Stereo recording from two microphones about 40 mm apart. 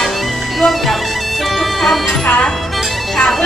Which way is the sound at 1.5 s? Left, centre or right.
Centre.